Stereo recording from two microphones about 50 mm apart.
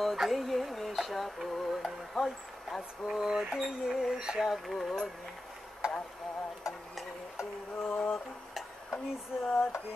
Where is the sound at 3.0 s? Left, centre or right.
Centre.